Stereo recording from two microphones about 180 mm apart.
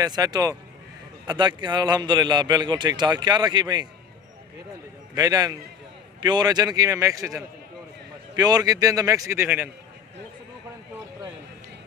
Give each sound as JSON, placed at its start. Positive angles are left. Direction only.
{"t": 0.0, "sound": "a man's voice", "side_deg": -20}
{"t": 5.1, "sound": "a man's voice", "side_deg": -20}